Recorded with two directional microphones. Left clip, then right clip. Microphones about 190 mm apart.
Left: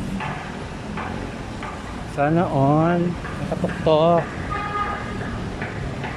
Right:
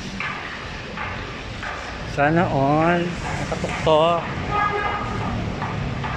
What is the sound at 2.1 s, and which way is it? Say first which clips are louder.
Speech: right 1 dB; 5° left (ahead or behind).